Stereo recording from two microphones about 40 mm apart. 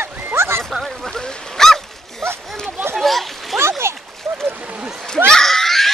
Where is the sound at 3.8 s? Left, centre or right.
Right.